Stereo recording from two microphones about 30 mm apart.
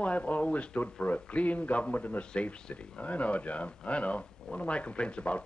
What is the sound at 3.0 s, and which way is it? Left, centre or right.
A man's voice, left.